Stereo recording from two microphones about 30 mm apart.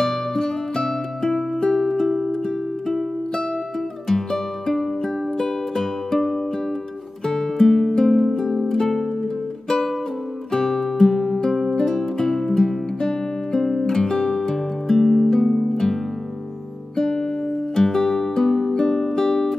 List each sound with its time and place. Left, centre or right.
0.0 s music: centre
4.1 s music: centre
16.9 s music: centre
17.7 s music: centre